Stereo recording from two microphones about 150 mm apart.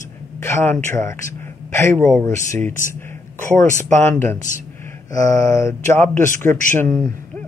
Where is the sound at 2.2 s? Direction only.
20° left (ahead or behind).